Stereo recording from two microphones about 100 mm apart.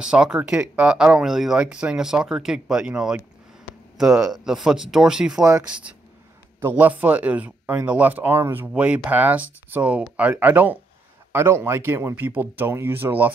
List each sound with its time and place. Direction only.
0.0 s speech: 10° right (ahead or behind)